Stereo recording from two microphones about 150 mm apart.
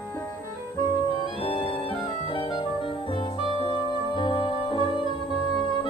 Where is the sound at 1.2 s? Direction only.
35° left (ahead or behind).